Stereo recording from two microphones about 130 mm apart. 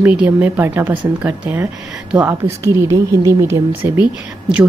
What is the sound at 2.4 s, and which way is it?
A woman's voice, 25° right (ahead or behind).